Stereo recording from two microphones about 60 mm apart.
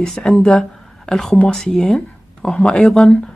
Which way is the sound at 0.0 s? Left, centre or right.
Centre.